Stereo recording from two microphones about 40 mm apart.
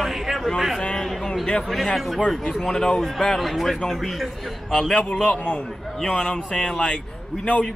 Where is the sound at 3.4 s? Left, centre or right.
Centre.